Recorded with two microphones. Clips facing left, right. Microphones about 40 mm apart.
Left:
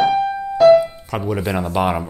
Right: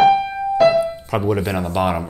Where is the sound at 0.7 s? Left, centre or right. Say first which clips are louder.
Left 5 dB; centre.